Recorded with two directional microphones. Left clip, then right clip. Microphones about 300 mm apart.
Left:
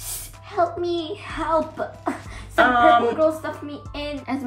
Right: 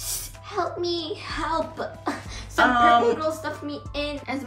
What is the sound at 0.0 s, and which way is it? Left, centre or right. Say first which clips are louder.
Music: right 3 dB; left.